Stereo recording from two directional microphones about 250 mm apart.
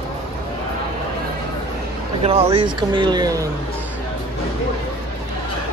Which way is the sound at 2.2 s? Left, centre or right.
Right.